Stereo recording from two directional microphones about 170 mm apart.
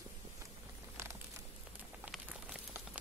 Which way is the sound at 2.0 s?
5° right (ahead or behind).